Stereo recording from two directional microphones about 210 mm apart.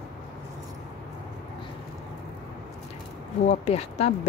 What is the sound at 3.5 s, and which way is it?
Speech, 30° left (ahead or behind).